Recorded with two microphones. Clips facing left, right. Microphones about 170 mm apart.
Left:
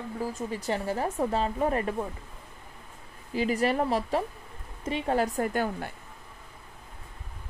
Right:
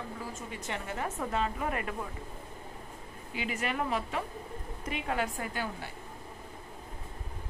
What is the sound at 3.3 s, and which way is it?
Speech, 35° left (ahead or behind).